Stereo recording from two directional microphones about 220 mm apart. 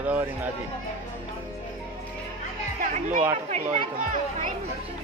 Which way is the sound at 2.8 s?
35° right (ahead or behind).